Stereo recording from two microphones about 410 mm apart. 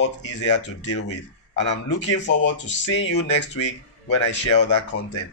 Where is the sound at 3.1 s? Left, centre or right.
Left.